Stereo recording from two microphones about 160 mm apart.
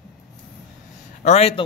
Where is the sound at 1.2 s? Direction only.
40° left (ahead or behind).